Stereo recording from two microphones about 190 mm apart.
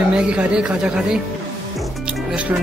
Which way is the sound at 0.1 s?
5° right (ahead or behind).